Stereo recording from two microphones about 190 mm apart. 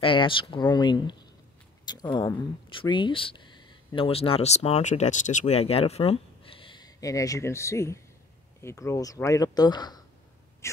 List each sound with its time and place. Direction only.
0.0 s speech: 25° left (ahead or behind)
10.6 s gasp: 15° left (ahead or behind)